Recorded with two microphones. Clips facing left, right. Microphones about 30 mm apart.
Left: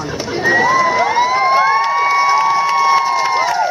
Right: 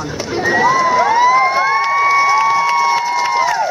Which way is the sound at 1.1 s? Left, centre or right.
Centre.